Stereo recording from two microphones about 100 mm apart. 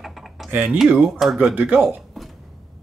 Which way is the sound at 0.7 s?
5° right (ahead or behind).